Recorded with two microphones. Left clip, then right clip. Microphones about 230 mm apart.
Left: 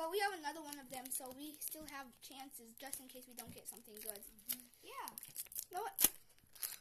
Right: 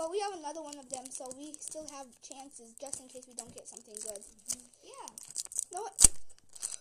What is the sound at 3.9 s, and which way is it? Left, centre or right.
Speech, centre.